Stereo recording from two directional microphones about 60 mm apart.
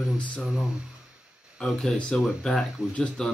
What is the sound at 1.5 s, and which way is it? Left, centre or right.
Speech, centre.